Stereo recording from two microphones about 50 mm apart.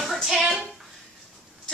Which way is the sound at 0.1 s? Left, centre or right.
Centre.